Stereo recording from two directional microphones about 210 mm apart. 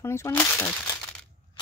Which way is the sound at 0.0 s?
15° left (ahead or behind).